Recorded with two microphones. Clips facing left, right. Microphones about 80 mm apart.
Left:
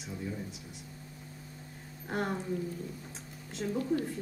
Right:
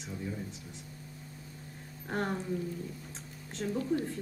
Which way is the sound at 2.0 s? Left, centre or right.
Centre.